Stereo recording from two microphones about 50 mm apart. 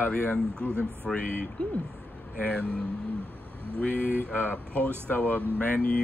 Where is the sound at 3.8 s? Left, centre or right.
Left.